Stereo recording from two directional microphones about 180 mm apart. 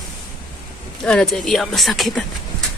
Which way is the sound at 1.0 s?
5° left (ahead or behind).